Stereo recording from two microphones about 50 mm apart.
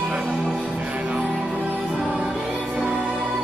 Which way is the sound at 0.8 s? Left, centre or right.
Right.